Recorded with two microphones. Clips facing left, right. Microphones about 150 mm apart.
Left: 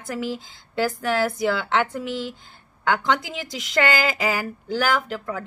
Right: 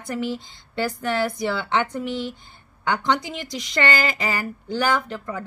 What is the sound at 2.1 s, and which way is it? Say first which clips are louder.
Speech: right 1 dB; 90° left.